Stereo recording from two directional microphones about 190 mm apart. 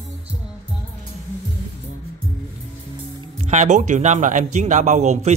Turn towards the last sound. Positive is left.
turn(degrees=-40)  # may be behind; listen again after turning